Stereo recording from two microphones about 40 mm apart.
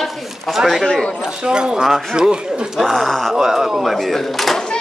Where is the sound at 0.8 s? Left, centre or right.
Left.